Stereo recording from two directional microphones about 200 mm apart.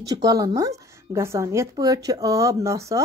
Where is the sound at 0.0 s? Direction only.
20° right (ahead or behind).